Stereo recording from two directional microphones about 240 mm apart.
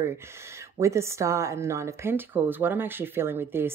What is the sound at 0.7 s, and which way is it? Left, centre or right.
A woman's voice, centre.